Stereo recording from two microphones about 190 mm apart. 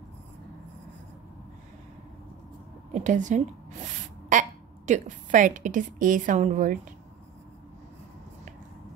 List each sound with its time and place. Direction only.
2.9 s speech: 40° right (ahead or behind)